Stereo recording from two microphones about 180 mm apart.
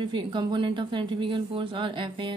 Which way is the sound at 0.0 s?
25° right (ahead or behind).